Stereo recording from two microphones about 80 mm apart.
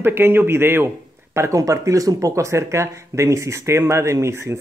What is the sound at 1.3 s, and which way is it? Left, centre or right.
Speech, right.